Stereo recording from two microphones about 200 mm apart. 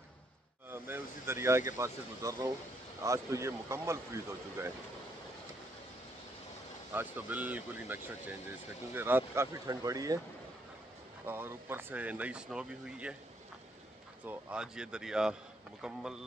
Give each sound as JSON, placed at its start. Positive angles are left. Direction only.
{"t": 0.7, "sound": "speech", "side_deg": -10}
{"t": 6.9, "sound": "speech", "side_deg": -10}
{"t": 11.2, "sound": "speech", "side_deg": -10}
{"t": 14.2, "sound": "speech", "side_deg": -5}